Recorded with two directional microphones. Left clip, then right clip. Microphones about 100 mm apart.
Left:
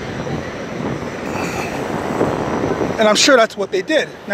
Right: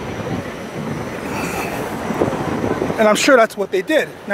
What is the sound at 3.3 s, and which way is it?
Speech, 60° right (ahead or behind).